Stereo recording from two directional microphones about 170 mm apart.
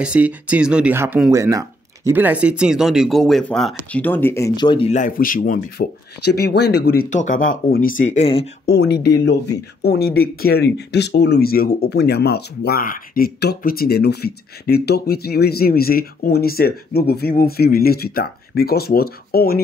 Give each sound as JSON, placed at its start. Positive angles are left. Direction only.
{"t": 0.0, "sound": "speech", "side_deg": -5}
{"t": 4.8, "sound": "speech", "side_deg": 45}
{"t": 8.6, "sound": "speech", "side_deg": 75}